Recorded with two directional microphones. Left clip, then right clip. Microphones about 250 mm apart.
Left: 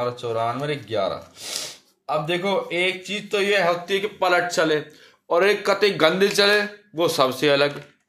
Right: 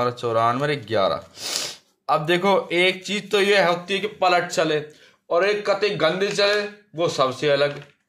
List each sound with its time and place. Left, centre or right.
0.0 s speech: right; by 4.8 s centre
5.3 s a man's voice: centre